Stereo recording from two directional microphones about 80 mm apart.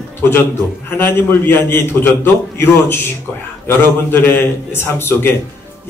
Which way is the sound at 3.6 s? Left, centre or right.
Left.